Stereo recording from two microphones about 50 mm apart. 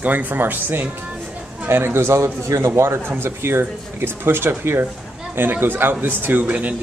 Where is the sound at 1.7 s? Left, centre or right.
Right.